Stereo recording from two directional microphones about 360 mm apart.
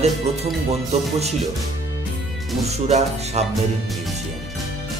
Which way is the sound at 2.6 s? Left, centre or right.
Centre.